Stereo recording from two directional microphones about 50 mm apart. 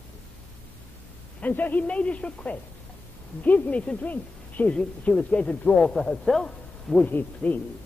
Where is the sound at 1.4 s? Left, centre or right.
Left.